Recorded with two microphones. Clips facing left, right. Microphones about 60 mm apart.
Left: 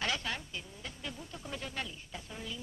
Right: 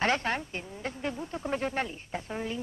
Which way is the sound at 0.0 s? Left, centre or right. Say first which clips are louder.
Right 8 dB; right.